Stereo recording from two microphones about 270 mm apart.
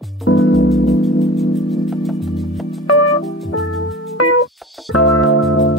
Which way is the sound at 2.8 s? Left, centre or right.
Left.